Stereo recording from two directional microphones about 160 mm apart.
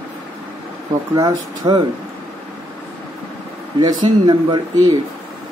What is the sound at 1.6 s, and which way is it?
Speech, 25° right (ahead or behind).